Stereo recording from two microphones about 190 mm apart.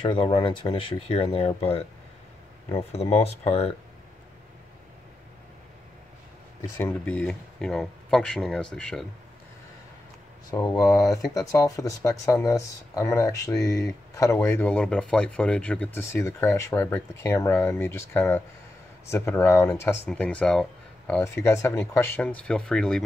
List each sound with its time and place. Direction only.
0.0 s speech: 25° left (ahead or behind)
6.8 s speech: 10° left (ahead or behind)
10.5 s speech: 20° left (ahead or behind)
21.1 s speech: 15° left (ahead or behind)